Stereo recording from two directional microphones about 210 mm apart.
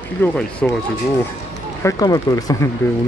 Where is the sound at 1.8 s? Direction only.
15° left (ahead or behind).